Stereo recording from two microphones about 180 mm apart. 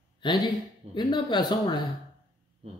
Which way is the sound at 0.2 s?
25° left (ahead or behind).